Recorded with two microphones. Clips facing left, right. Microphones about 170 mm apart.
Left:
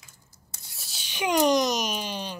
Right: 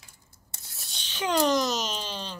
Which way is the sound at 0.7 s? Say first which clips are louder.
Left 1 dB; centre (ahead or behind).